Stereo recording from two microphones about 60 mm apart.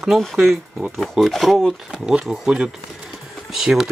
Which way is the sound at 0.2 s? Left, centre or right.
Centre.